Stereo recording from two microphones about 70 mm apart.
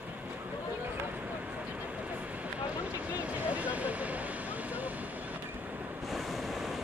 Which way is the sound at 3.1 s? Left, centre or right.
Right.